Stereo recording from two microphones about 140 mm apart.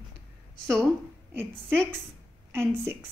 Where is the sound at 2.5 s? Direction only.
15° right (ahead or behind).